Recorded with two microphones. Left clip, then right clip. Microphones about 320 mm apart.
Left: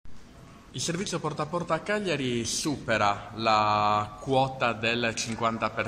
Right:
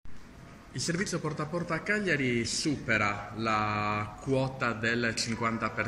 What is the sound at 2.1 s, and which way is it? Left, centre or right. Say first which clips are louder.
Speech: even; left.